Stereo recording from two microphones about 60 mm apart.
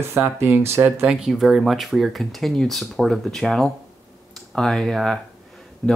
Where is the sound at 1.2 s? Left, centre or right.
Centre.